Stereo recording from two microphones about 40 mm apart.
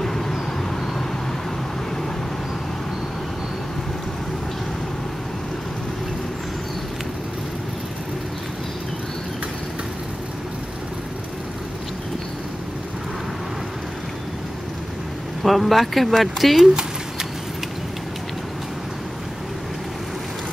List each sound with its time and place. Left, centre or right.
0.0 s vehicle: centre
15.4 s speech: centre